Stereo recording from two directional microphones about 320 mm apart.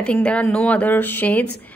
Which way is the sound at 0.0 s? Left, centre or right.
Centre.